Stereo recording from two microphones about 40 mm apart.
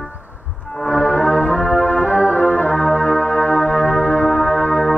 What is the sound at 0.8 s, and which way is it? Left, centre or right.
Music, left.